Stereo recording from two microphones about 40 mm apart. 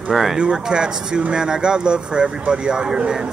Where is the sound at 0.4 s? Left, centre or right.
Right.